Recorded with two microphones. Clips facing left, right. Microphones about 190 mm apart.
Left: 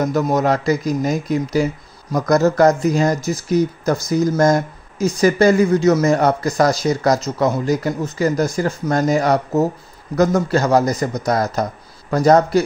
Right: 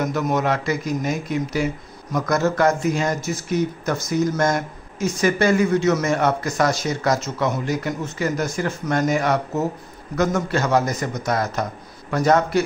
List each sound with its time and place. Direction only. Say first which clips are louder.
0.0 s speech: left 4 dB; 35° left (ahead or behind)